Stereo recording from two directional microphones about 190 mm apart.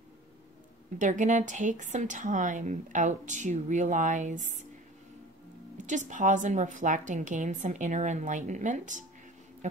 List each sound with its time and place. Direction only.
0.9 s a woman's voice: 40° right (ahead or behind)
5.9 s a woman's voice: 40° right (ahead or behind)